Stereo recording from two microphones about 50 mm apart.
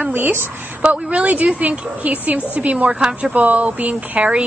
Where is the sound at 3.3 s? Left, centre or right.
Right.